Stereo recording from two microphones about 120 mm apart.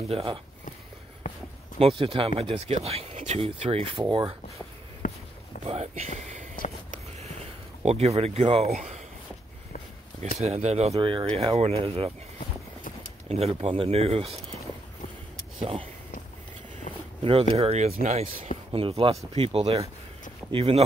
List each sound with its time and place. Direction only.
0.1 s speech: 55° right (ahead or behind)
1.8 s speech: 50° right (ahead or behind)
5.0 s a sound: 90° left
5.7 s speech: 65° right (ahead or behind)
7.8 s speech: 60° right (ahead or behind)
10.4 s speech: 65° right (ahead or behind)
11.0 s speech: 45° right (ahead or behind)
13.3 s speech: 60° right (ahead or behind)
15.6 s speech: 50° right (ahead or behind)
17.2 s speech: 55° right (ahead or behind)
18.7 s speech: 50° right (ahead or behind)